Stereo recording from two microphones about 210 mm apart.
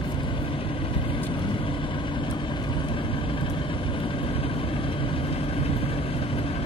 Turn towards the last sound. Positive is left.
turn(degrees=25)  # may be behind; listen again after turning